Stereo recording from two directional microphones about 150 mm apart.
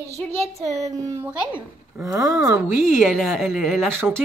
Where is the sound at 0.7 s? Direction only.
20° right (ahead or behind).